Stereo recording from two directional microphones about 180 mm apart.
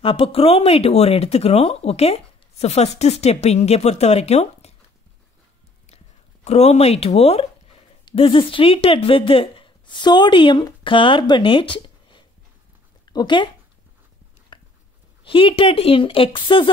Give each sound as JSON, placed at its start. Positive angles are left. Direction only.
{"t": 0.0, "sound": "speech", "side_deg": 30}
{"t": 6.4, "sound": "speech", "side_deg": 35}
{"t": 14.5, "sound": "a sound", "side_deg": 25}
{"t": 15.2, "sound": "a woman's voice", "side_deg": 30}